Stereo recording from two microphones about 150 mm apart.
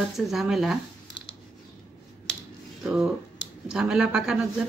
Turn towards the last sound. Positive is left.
turn(degrees=-5)  # may be behind; listen again after turning